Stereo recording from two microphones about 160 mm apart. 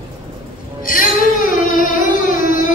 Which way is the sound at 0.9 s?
60° left (ahead or behind).